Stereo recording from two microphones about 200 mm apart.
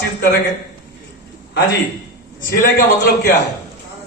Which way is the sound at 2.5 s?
55° left (ahead or behind).